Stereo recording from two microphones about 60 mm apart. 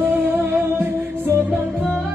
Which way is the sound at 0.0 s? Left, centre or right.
Right.